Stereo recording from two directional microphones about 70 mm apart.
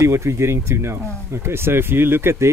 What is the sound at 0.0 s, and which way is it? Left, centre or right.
Speech, right.